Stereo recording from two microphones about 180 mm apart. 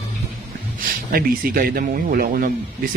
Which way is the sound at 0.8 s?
55° right (ahead or behind).